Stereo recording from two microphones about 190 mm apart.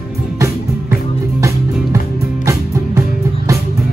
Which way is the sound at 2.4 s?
15° right (ahead or behind).